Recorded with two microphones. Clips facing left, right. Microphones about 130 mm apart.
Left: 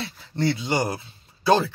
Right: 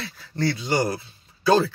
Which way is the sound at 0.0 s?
20° left (ahead or behind).